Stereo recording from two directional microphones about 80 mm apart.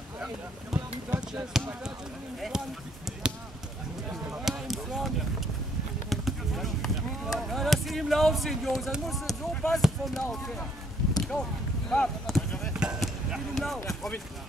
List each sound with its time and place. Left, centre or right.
0.7 s a sound: right
2.5 s speech: centre
3.1 s basketball bounce: centre
4.5 s speech: centre
9.5 s speech: centre
9.8 s speech: centre
11.1 s a sound: centre
13.0 s speech: centre